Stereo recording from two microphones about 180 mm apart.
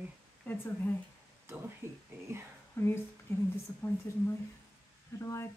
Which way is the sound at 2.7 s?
15° left (ahead or behind).